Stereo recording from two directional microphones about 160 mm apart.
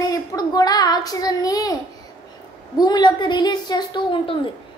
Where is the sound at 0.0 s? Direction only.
25° left (ahead or behind).